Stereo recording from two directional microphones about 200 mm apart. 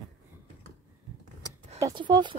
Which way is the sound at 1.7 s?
20° right (ahead or behind).